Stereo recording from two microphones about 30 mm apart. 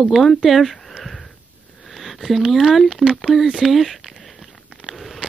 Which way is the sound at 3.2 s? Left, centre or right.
Centre.